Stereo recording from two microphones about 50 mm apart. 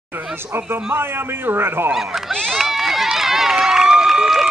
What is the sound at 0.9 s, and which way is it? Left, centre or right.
Speech, right.